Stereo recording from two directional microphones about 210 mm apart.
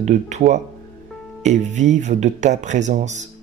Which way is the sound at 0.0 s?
35° right (ahead or behind).